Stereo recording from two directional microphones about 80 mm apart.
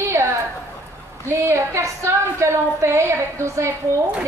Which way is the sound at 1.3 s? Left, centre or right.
Right.